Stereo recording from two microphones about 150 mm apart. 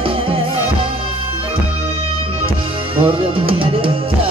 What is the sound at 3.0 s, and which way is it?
Music, 35° right (ahead or behind).